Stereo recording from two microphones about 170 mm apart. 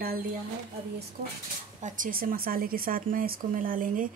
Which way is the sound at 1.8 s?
50° right (ahead or behind).